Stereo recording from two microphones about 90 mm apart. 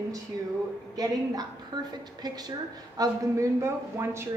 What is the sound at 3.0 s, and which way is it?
Speech, 35° right (ahead or behind).